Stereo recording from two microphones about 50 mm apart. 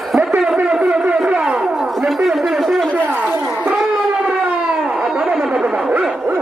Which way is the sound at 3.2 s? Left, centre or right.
Right.